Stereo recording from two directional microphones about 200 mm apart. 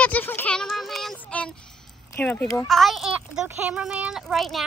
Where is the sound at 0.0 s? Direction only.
10° left (ahead or behind).